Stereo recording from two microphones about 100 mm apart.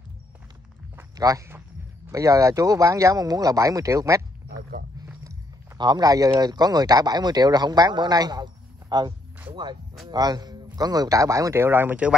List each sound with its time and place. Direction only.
1.1 s speech: 35° right (ahead or behind)
5.8 s speech: 45° right (ahead or behind); by 12.2 s 15° right (ahead or behind)